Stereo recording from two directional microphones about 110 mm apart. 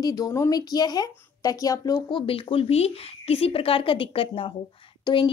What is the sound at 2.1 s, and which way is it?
Speech, 55° left (ahead or behind).